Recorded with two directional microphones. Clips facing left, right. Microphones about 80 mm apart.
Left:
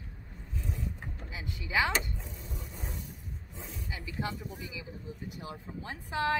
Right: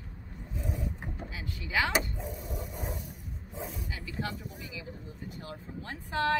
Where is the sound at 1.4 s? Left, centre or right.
Left.